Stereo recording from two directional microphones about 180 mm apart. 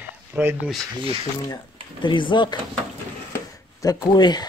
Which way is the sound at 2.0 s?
25° left (ahead or behind).